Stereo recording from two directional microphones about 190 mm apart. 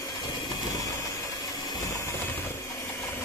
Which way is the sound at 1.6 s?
20° left (ahead or behind).